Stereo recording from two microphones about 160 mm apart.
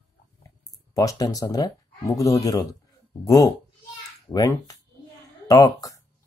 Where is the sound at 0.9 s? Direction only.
20° left (ahead or behind).